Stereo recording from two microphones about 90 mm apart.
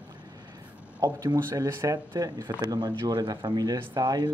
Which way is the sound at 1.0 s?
45° right (ahead or behind).